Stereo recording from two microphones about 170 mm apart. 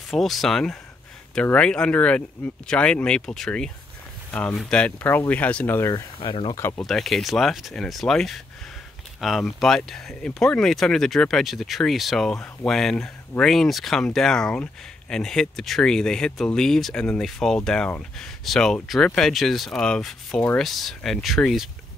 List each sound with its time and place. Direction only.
0.1 s speech: centre (ahead or behind)
6.2 s speech: 30° left (ahead or behind)
6.5 s speech: 15° left (ahead or behind)
6.8 s speech: centre (ahead or behind)